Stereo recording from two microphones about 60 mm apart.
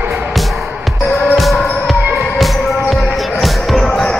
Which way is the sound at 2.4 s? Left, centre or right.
Centre.